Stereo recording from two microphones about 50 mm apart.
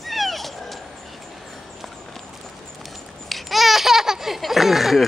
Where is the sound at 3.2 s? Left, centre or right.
Centre.